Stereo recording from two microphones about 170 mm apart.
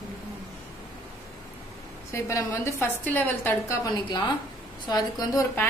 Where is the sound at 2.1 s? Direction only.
15° left (ahead or behind).